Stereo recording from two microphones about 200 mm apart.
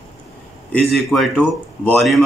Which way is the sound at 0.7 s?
Centre (ahead or behind).